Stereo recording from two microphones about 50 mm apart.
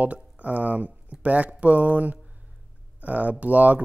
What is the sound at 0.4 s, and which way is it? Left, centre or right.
Speech, right.